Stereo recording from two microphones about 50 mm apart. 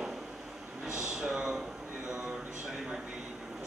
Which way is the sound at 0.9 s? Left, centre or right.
Centre.